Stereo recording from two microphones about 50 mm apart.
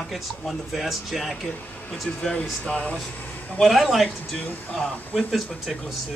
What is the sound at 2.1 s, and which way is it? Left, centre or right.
Speech, centre.